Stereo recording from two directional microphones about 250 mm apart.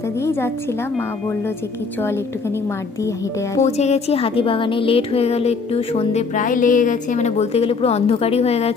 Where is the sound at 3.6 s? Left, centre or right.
Left.